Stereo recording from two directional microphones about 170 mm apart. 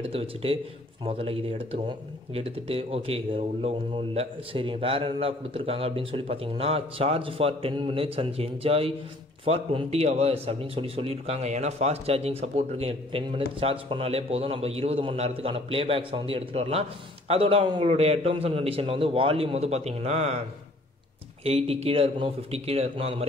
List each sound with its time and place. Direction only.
0.1 s speech: 35° right (ahead or behind)
21.5 s speech: 35° right (ahead or behind)